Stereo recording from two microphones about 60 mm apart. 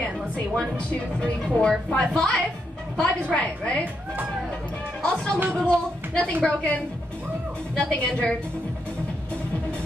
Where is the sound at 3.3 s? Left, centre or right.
Centre.